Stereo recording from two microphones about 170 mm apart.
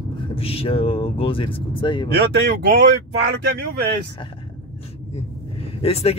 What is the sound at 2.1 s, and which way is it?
Speech, 70° right (ahead or behind).